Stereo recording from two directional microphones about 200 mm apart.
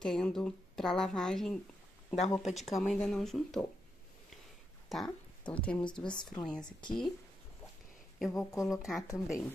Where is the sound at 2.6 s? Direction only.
Centre (ahead or behind).